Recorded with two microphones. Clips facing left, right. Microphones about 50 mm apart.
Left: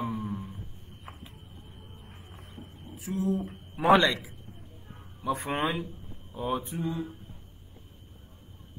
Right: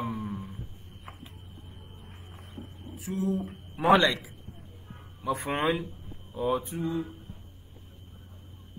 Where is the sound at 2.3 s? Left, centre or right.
Right.